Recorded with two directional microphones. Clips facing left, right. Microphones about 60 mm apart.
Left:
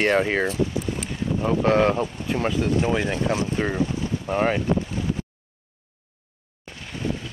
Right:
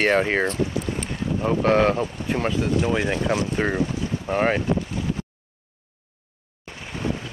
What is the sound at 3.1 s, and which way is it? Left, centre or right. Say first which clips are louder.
Speech: right 1 dB; right.